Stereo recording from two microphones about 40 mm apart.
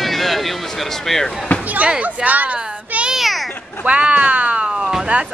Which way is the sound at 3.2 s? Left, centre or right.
Centre.